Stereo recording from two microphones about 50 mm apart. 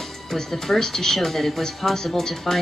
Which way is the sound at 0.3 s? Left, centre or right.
Centre.